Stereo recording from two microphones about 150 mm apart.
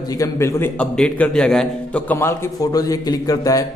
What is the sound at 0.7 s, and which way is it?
A man's voice, 5° left (ahead or behind).